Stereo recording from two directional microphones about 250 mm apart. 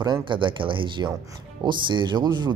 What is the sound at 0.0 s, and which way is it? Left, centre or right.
Speech, centre.